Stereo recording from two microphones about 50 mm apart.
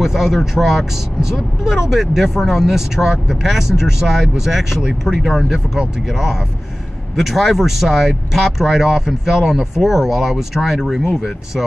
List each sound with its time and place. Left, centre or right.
0.0 s speech: centre